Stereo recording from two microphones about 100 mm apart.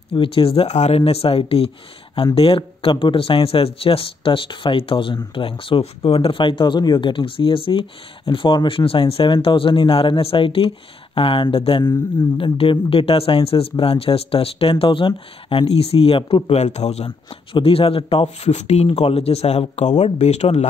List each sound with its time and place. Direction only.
0.1 s speech: 65° left (ahead or behind); by 20.6 s 90° left